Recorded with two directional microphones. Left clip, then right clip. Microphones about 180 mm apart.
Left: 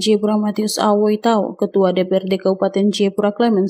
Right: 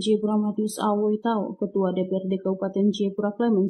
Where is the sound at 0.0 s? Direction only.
25° left (ahead or behind).